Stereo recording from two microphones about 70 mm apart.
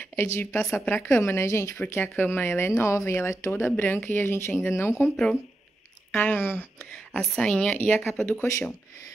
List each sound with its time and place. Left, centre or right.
0.0 s a woman's voice: left
1.8 s speech: left
3.7 s speech: left
6.1 s speech: left
7.2 s speech: centre
8.3 s speech: left